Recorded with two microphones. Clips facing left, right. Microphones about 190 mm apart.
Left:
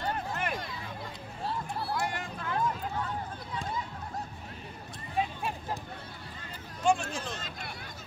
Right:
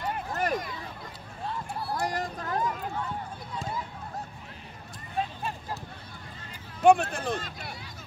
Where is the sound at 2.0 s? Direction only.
40° right (ahead or behind).